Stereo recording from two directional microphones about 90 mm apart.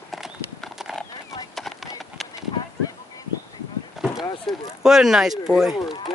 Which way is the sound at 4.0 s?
5° right (ahead or behind).